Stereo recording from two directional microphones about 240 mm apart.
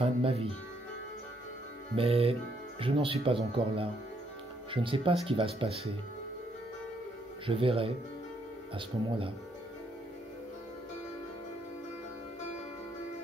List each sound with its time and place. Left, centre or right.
0.0 s speech: right
2.0 s speech: right
7.4 s speech: right